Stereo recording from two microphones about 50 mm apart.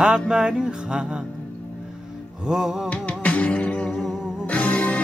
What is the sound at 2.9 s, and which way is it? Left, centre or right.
Music, left.